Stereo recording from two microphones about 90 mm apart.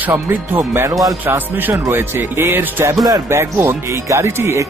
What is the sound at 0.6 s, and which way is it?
Speech, 35° right (ahead or behind).